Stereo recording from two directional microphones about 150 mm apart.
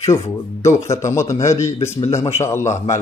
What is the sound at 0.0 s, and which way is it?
A man's voice, 20° left (ahead or behind).